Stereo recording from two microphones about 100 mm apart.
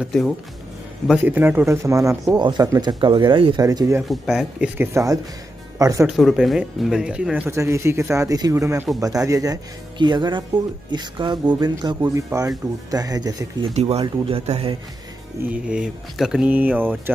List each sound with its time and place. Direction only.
1.0 s speech: 15° right (ahead or behind)
1.7 s speech: 30° right (ahead or behind)
2.3 s speech: 45° right (ahead or behind)
3.5 s speech: 40° right (ahead or behind)
4.1 s speech: 5° right (ahead or behind)
4.7 s speech: 30° right (ahead or behind)
6.1 s speech: centre (ahead or behind)
7.4 s speech: 30° right (ahead or behind)
9.9 s speech: 50° right (ahead or behind)
12.0 s speech: 30° right (ahead or behind)
13.7 s speech: 90° right
14.2 s speech: 80° right
15.4 s speech: 10° right (ahead or behind)